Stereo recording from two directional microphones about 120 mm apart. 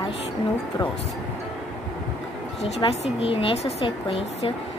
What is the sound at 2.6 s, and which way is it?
A woman's voice, 60° left (ahead or behind).